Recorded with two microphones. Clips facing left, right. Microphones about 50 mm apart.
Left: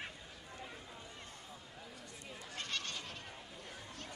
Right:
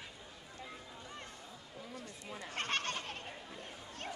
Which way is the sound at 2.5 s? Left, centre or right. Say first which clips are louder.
Right 6 dB; right.